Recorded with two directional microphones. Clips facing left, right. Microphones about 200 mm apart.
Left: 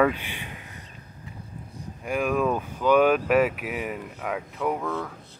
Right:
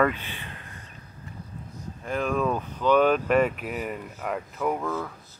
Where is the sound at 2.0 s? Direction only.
10° left (ahead or behind).